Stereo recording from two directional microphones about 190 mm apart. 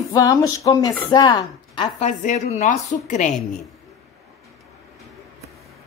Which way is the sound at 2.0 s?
40° left (ahead or behind).